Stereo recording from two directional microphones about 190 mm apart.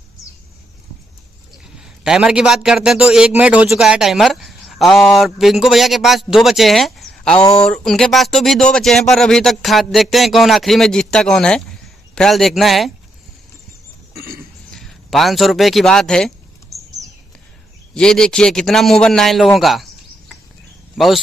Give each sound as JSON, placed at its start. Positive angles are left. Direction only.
{"t": 1.8, "sound": "a man's voice", "side_deg": -5}
{"t": 14.1, "sound": "cough", "side_deg": -50}
{"t": 14.7, "sound": "a man's voice", "side_deg": 0}
{"t": 17.9, "sound": "a man's voice", "side_deg": 5}